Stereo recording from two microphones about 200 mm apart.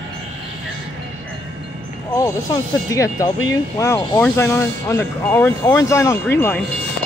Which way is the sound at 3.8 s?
10° left (ahead or behind).